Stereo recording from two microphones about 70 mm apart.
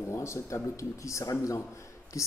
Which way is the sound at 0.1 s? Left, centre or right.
Left.